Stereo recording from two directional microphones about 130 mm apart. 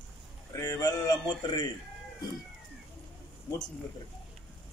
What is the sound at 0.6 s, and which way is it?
Speech, 30° left (ahead or behind).